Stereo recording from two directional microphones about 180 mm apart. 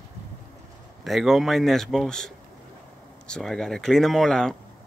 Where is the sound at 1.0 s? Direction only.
Centre (ahead or behind).